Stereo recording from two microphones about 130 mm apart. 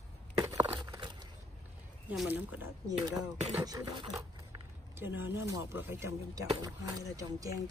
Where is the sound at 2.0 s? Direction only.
10° right (ahead or behind).